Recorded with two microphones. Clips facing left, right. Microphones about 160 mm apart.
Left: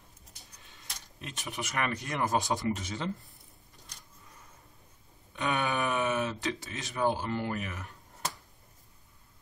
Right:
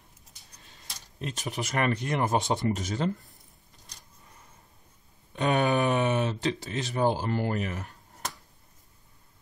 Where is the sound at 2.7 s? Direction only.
40° right (ahead or behind).